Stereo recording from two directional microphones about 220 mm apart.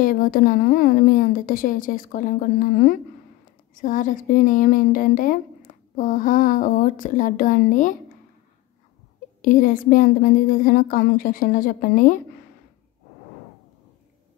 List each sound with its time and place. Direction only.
0.0 s speech: 40° left (ahead or behind)
9.4 s speech: 35° left (ahead or behind)